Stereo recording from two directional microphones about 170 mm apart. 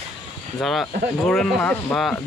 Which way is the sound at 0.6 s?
Centre (ahead or behind).